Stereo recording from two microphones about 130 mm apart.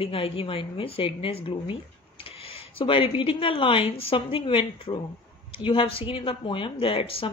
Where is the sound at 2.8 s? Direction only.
40° left (ahead or behind).